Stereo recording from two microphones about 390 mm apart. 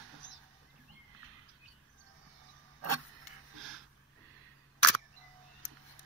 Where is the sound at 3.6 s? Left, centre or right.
Right.